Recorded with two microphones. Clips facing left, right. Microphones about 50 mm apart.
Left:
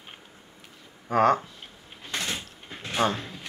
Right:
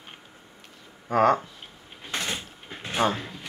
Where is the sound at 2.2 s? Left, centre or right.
Centre.